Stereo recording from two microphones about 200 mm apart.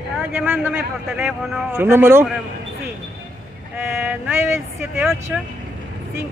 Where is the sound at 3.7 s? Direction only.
10° right (ahead or behind).